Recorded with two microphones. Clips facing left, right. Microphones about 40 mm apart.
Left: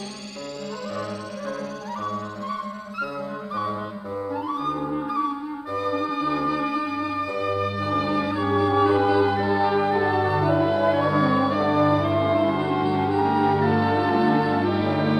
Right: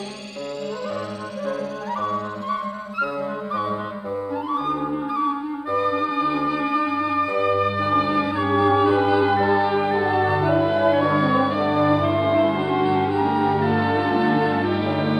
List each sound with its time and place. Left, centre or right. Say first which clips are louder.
4.5 s music: right 4 dB; right